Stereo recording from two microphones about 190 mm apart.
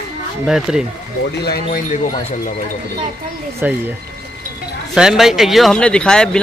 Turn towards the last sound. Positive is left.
turn(degrees=5)  # may be behind; listen again after turning